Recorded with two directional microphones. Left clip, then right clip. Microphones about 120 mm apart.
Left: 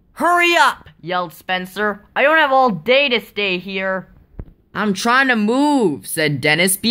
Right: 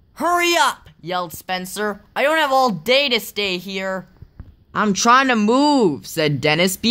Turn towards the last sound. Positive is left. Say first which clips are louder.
# left 2 dB
turn(degrees=-35)  # may be behind; listen again after turning